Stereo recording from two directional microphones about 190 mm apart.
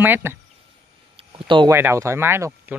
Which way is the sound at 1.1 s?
25° right (ahead or behind).